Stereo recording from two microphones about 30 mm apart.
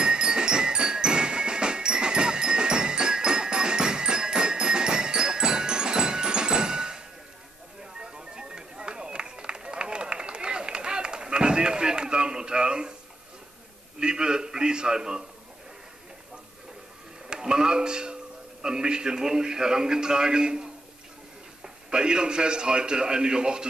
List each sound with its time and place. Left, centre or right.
0.0 s music: right
8.0 s run: right
13.9 s a man's voice: right
17.3 s a sound: right
18.6 s a man's voice: right
21.9 s a man's voice: right